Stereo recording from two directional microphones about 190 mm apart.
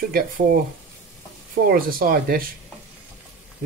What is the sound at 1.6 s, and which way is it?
Speech, 50° right (ahead or behind).